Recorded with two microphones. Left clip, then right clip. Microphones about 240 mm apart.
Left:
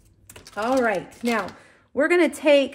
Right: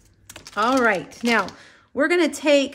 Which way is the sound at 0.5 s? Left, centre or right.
Centre.